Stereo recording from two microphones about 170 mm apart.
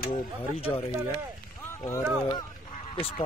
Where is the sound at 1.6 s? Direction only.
15° left (ahead or behind).